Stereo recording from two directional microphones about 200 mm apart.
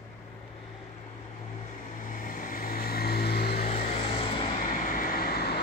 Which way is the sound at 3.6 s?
30° left (ahead or behind).